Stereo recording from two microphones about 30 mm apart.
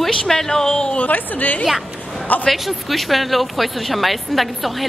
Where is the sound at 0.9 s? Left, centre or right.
Left.